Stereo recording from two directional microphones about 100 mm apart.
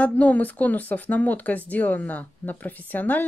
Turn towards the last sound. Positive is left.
turn(degrees=15)  # may be behind; listen again after turning